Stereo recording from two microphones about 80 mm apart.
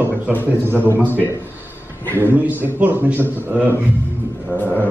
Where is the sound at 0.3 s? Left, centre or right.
Left.